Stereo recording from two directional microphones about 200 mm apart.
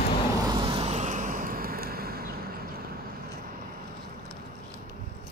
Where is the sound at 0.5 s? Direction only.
25° right (ahead or behind); by 2.3 s 50° right (ahead or behind).